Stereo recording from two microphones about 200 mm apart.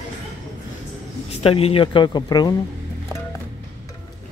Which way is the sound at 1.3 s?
30° left (ahead or behind).